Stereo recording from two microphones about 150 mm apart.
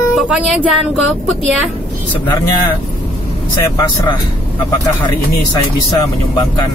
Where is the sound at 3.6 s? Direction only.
20° left (ahead or behind).